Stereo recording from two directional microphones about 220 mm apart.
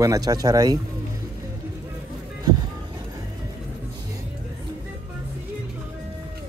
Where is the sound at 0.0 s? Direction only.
15° right (ahead or behind).